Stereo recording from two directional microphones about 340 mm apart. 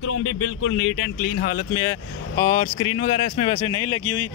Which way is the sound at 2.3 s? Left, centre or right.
Centre.